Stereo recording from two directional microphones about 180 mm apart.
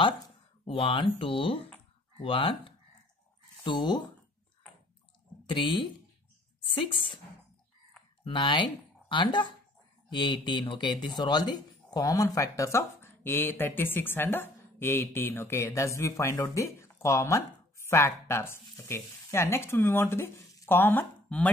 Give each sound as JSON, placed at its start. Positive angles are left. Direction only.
{"t": 0.7, "sound": "speech", "side_deg": 30}
{"t": 5.5, "sound": "speech", "side_deg": 25}
{"t": 8.2, "sound": "speech", "side_deg": 25}